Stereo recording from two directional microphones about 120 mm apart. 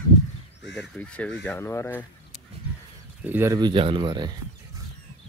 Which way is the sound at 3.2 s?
15° right (ahead or behind).